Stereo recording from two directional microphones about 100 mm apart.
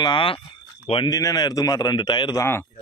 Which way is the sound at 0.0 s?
55° left (ahead or behind).